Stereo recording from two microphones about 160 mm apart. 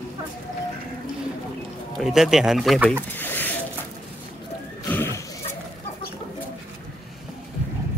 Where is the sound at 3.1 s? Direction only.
10° left (ahead or behind).